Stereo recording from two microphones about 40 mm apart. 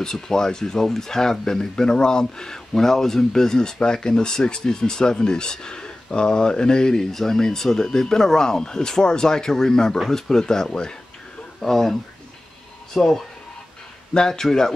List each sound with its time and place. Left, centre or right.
0.0 s speech: centre
11.6 s speech: centre